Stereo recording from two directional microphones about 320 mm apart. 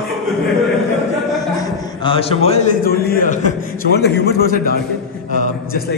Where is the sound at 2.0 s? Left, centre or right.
Centre.